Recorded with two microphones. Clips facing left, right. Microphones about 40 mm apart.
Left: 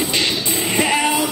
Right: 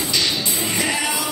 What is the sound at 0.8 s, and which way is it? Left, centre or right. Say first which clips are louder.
Music: left 7 dB; left.